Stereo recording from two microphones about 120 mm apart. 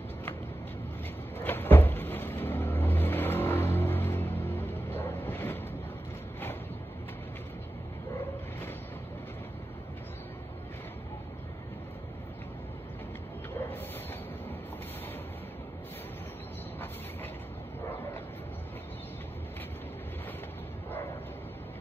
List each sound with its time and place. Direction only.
1.4 s vehicle: 15° left (ahead or behind)